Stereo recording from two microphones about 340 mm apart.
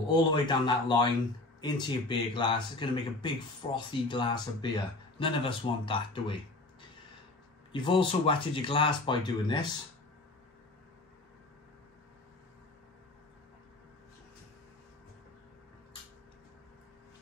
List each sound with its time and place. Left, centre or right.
0.1 s speech: centre
7.7 s speech: centre